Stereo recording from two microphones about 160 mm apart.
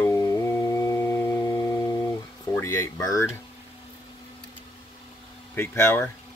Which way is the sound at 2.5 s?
15° left (ahead or behind).